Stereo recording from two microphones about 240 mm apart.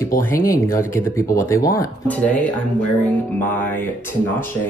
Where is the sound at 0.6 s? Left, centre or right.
Centre.